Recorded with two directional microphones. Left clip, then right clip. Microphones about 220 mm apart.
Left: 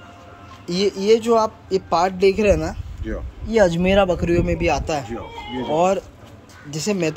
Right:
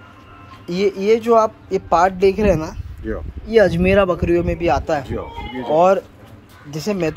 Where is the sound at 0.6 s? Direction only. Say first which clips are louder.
Right 1 dB; 5° left (ahead or behind).